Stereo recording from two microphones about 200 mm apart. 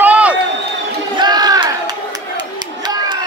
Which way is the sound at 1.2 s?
20° right (ahead or behind).